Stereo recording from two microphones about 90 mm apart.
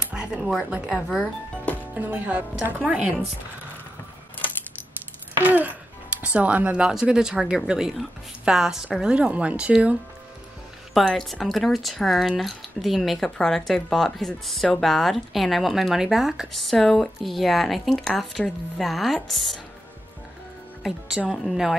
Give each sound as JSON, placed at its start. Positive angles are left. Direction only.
{"t": 0.0, "sound": "speech", "side_deg": -10}
{"t": 2.0, "sound": "speech", "side_deg": -20}
{"t": 5.4, "sound": "wail", "side_deg": -20}
{"t": 6.2, "sound": "speech", "side_deg": -15}
{"t": 10.9, "sound": "speech", "side_deg": 0}
{"t": 20.8, "sound": "speech", "side_deg": 0}